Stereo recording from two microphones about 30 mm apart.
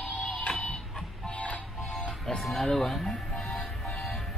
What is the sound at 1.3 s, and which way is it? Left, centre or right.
Music, left.